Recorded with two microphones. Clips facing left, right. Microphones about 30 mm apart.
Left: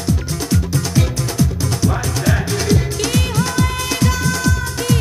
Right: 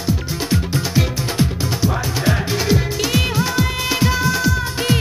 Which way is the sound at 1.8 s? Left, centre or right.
Centre.